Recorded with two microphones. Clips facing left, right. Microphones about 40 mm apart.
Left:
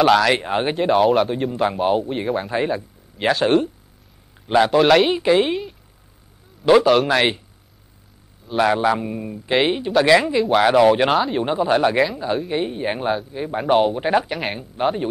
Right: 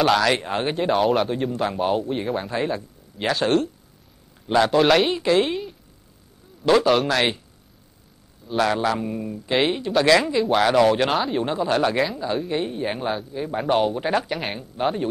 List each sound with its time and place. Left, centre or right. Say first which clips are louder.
0.0 s speech: left 4 dB; centre
0.3 s a man's voice: left 3 dB; centre
0.7 s speech: left 4 dB; centre
1.5 s a man's voice: left 3 dB; centre
3.4 s a man's voice: left 3 dB; centre
4.7 s speech: left 3 dB; centre
5.1 s a man's voice: left 3 dB; centre
6.6 s a man's voice: left 4 dB; centre
8.5 s a man's voice: left 4 dB; centre
10.6 s a man's voice: left 4 dB; centre
11.1 s speech: left 3 dB; centre
11.4 s a man's voice: left 3 dB; centre
14.3 s speech: left 2 dB; centre